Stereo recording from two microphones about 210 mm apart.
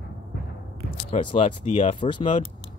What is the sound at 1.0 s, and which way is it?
Speech, 25° left (ahead or behind).